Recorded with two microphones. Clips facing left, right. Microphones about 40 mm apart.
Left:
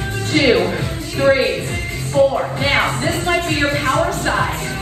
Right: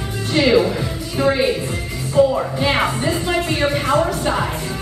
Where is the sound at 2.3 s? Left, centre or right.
Left.